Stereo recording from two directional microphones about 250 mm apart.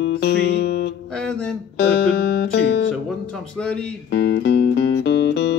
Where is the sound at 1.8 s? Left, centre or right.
Left.